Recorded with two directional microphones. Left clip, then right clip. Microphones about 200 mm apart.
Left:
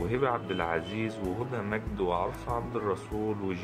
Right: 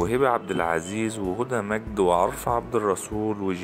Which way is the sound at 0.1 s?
45° right (ahead or behind).